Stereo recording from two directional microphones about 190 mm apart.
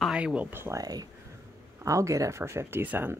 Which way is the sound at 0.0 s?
5° right (ahead or behind).